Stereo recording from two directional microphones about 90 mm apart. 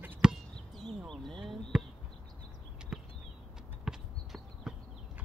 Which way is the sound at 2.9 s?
5° right (ahead or behind).